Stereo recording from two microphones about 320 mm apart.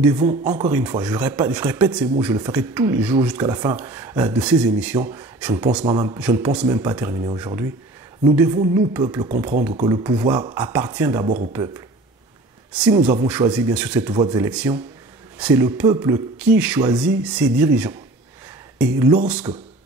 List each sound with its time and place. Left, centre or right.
0.0 s speech: centre
0.3 s speech: right
0.7 s speech: centre
8.2 s a sound: centre
8.7 s speech: centre
12.9 s speech: centre
18.9 s speech: centre